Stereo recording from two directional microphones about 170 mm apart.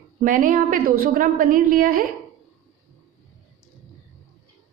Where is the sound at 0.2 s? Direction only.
55° right (ahead or behind).